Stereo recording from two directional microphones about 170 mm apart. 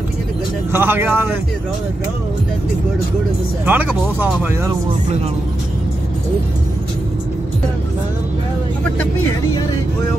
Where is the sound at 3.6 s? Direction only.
10° right (ahead or behind).